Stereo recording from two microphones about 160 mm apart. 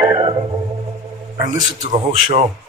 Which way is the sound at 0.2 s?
30° right (ahead or behind).